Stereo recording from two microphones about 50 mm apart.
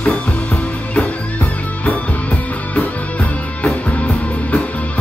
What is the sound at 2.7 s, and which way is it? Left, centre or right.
Music, left.